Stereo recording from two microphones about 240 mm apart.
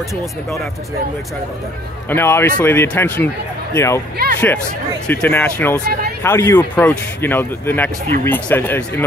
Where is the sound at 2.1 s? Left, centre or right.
Centre.